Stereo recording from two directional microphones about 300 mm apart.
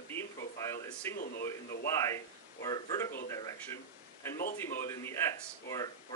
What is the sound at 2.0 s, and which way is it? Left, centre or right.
Speech, centre.